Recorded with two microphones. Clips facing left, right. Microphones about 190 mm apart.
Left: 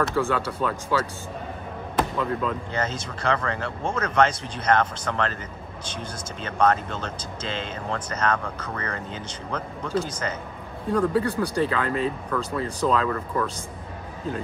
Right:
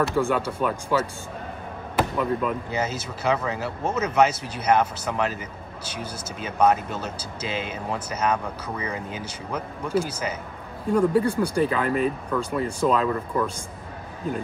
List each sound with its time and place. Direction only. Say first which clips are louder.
0.1 s speech: right 1 dB; 15° right (ahead or behind)